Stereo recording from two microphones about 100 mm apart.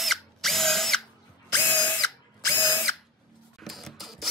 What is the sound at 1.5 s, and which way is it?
Drill, 20° left (ahead or behind).